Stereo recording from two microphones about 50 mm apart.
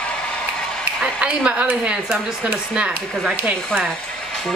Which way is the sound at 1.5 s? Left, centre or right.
Right.